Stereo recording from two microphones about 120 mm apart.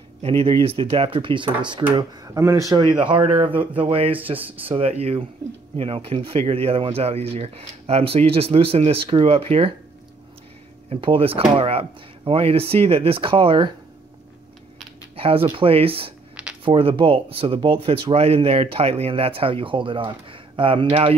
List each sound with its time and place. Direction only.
0.2 s speech: 50° right (ahead or behind)
2.0 s speech: 25° right (ahead or behind)
2.7 s speech: 40° right (ahead or behind)
4.4 s speech: 15° right (ahead or behind)
4.7 s speech: 60° right (ahead or behind)
10.9 s speech: 50° right (ahead or behind)
15.1 s speech: 50° right (ahead or behind)